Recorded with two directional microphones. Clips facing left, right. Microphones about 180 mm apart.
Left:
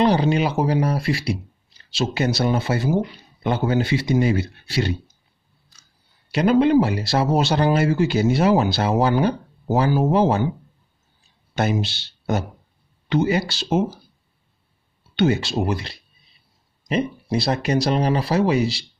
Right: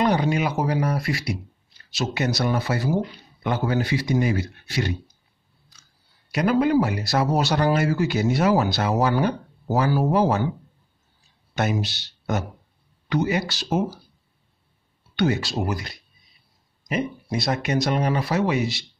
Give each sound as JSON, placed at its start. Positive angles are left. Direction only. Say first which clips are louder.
{"t": 0.0, "sound": "speech", "louder": "left 3 dB", "side_deg": 30}
{"t": 6.3, "sound": "speech", "louder": "left 4 dB", "side_deg": 25}
{"t": 11.5, "sound": "speech", "louder": "left 2 dB", "side_deg": 30}
{"t": 15.1, "sound": "speech", "louder": "left 3 dB", "side_deg": 25}